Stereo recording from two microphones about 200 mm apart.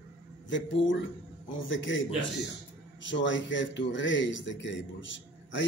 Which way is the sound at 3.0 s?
65° left (ahead or behind).